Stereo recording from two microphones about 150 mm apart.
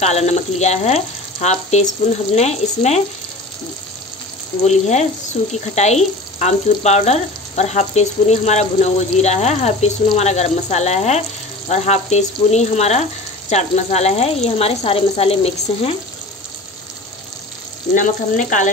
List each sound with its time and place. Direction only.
0.0 s speech: 45° left (ahead or behind)
4.6 s speech: 50° left (ahead or behind)
17.9 s frying: 60° left (ahead or behind)